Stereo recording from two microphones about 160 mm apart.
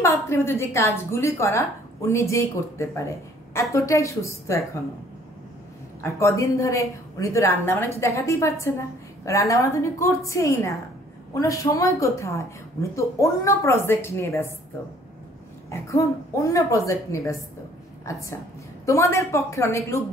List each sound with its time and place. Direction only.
0.0 s a woman's voice: 15° left (ahead or behind)
6.0 s a woman's voice: 20° left (ahead or behind)
15.7 s a woman's voice: 20° left (ahead or behind)